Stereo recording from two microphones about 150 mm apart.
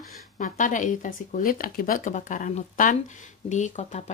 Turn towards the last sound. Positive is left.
turn(degrees=55)  # may be behind; listen again after turning